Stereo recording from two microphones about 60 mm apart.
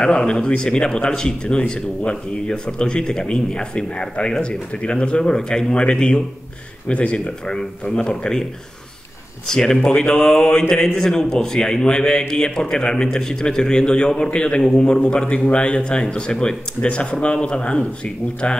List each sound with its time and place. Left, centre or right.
0.0 s speech: centre
9.5 s speech: centre